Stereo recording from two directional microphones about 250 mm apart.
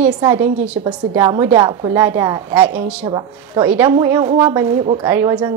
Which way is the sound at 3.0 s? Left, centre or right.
Centre.